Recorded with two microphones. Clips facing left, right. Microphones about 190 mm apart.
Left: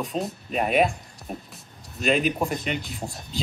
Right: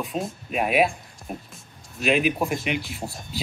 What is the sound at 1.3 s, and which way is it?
Music, 5° right (ahead or behind).